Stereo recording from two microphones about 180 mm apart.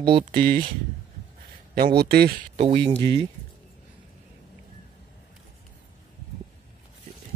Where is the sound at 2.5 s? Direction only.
30° right (ahead or behind).